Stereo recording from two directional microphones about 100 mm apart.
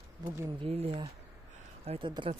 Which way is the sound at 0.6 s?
85° right.